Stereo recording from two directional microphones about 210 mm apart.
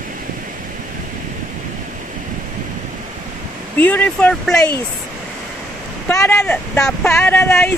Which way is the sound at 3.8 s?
10° left (ahead or behind).